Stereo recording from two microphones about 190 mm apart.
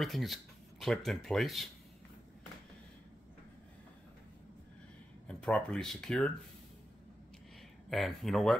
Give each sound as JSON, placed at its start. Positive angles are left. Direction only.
{"t": 0.0, "sound": "speech", "side_deg": 0}
{"t": 5.3, "sound": "speech", "side_deg": 5}
{"t": 7.9, "sound": "speech", "side_deg": 0}